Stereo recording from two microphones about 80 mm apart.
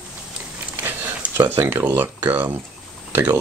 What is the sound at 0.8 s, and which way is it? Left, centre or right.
Speech, right.